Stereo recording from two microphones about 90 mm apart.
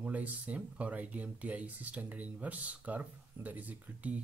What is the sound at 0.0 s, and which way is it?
Speech, 15° right (ahead or behind).